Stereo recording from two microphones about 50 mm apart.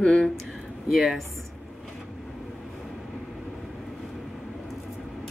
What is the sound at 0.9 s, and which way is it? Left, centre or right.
Speech, centre.